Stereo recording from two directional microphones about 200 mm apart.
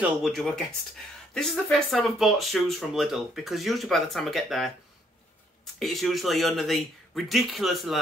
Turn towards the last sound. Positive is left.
turn(degrees=0)  # may be behind; listen again after turning